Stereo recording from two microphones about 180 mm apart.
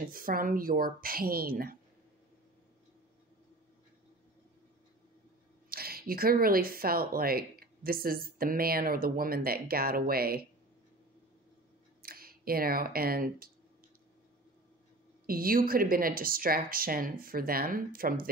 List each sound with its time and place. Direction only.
0.1 s a woman's voice: 50° right (ahead or behind)
5.7 s speech: 55° right (ahead or behind)
12.0 s speech: 55° right (ahead or behind)
15.2 s a woman's voice: 55° right (ahead or behind)